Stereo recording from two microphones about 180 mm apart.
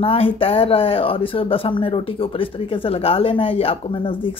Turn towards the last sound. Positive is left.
turn(degrees=30)  # may be behind; listen again after turning